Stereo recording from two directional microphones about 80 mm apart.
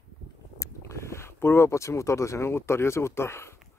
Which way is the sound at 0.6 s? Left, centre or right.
Left.